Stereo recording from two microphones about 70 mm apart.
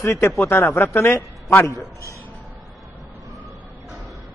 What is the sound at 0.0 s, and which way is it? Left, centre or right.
A man's voice, left.